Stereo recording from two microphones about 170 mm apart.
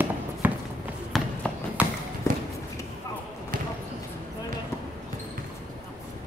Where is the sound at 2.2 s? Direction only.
15° left (ahead or behind).